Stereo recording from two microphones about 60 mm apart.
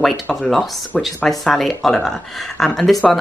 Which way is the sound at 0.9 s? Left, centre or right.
Centre.